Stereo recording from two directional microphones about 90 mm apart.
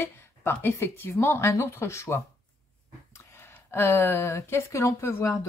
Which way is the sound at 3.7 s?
30° left (ahead or behind).